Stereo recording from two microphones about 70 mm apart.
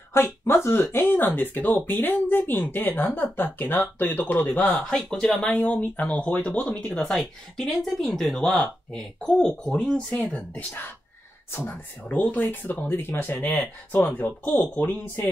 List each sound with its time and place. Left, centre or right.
0.1 s speech: left
0.9 s speech: left
4.8 s speech: centre
5.4 s speech: centre
6.6 s speech: centre; by 15.2 s left